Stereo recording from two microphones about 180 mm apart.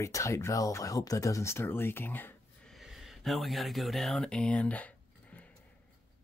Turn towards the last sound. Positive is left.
turn(degrees=10)  # may be behind; listen again after turning